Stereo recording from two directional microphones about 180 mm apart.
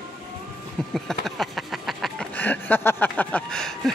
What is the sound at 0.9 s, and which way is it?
Speech, centre (ahead or behind).